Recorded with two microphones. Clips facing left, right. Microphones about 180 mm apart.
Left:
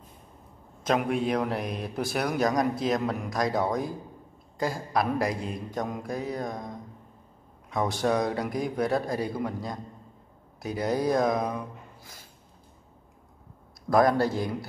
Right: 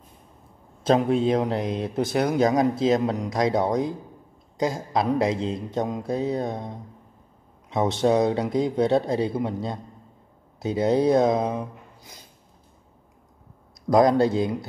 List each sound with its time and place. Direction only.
0.8 s a man's voice: 30° right (ahead or behind)
13.8 s a man's voice: 20° right (ahead or behind)